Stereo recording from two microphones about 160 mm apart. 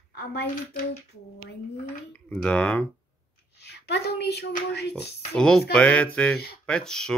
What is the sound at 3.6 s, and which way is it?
A woman's voice, 90° left.